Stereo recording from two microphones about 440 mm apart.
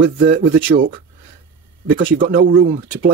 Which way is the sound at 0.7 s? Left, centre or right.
Right.